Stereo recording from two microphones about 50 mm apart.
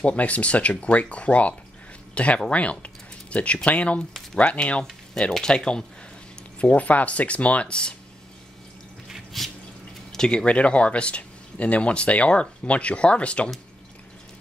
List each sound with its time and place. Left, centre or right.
0.0 s speech: left
6.6 s speech: left
9.1 s drip: centre
10.1 s speech: centre